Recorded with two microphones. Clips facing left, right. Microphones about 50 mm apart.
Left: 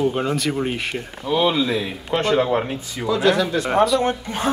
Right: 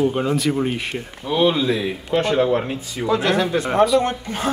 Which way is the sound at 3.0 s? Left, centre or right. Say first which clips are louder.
Left 1 dB; right.